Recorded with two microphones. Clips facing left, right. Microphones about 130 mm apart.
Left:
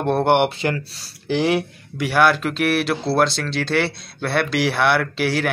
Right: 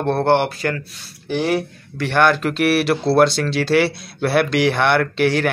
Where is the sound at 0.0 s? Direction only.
15° left (ahead or behind).